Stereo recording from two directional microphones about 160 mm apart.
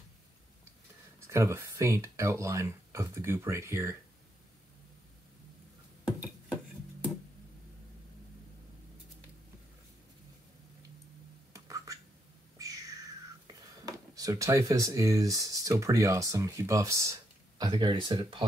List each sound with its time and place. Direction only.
1.2 s speech: 20° right (ahead or behind)
11.5 s a sound: 20° right (ahead or behind)
13.5 s speech: 20° right (ahead or behind)